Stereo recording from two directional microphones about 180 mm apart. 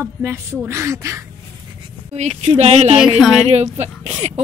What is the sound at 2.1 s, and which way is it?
Speech, 35° right (ahead or behind).